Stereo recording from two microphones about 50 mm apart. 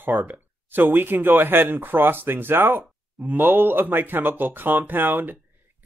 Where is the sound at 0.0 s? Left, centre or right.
Right.